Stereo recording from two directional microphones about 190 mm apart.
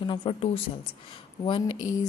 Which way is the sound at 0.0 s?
25° left (ahead or behind).